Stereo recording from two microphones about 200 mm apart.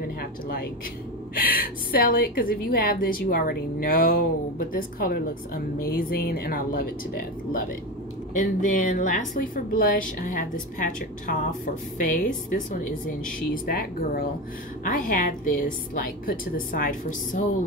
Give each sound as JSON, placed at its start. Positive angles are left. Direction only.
{"t": 0.2, "sound": "a woman's voice", "side_deg": 50}
{"t": 8.3, "sound": "a woman's voice", "side_deg": 40}